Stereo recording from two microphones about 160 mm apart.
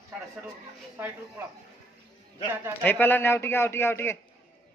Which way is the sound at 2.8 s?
10° left (ahead or behind).